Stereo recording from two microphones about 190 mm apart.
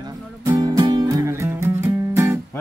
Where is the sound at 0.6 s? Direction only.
20° right (ahead or behind).